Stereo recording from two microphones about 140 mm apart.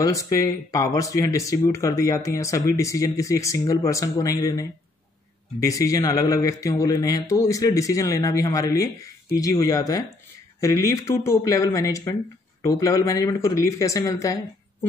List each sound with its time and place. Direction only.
0.0 s speech: 25° left (ahead or behind)